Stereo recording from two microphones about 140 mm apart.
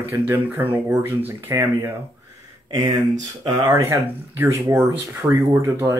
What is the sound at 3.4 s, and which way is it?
Speech, 20° right (ahead or behind).